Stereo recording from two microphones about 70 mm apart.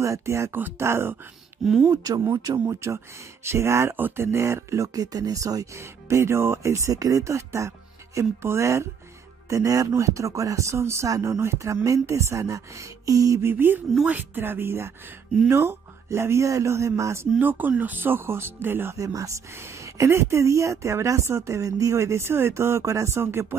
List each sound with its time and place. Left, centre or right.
0.0 s a woman's voice: right
1.6 s speech: centre
1.9 s a woman's voice: right
5.8 s a woman's voice: right
9.5 s a woman's voice: right
13.5 s a woman's voice: right
17.4 s speech: right
18.9 s a woman's voice: right